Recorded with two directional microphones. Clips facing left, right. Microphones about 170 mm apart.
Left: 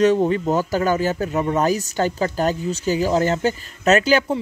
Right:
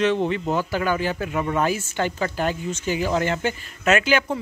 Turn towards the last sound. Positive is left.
turn(degrees=40)  # may be behind; listen again after turning